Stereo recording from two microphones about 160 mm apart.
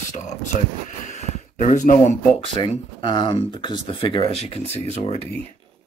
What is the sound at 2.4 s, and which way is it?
Speech, 30° left (ahead or behind).